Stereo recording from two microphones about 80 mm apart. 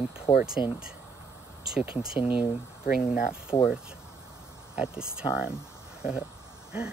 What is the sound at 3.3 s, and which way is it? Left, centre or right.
Speech, left.